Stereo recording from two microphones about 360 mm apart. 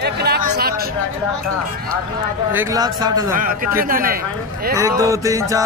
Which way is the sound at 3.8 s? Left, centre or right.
Right.